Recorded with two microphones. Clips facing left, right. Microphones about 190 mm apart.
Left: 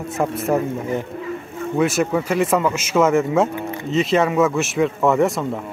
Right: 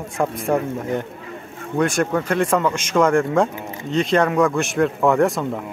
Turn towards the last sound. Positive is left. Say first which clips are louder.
# even
turn(degrees=0)  # may be behind; listen again after turning